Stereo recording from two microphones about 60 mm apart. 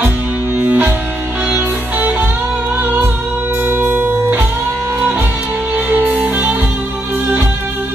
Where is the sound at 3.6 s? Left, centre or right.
Right.